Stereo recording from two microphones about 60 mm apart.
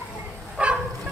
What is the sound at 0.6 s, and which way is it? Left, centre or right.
Bow-wow, centre.